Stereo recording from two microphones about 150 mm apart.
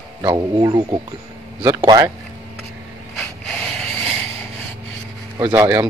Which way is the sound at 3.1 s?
5° left (ahead or behind).